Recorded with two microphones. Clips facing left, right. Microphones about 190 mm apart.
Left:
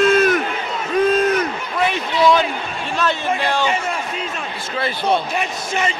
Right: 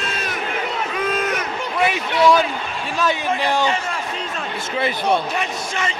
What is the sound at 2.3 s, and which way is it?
A man's voice, 10° right (ahead or behind).